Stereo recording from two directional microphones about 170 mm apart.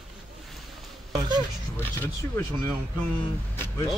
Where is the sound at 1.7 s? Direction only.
10° left (ahead or behind).